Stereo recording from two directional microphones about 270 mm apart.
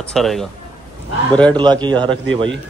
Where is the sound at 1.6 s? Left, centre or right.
Centre.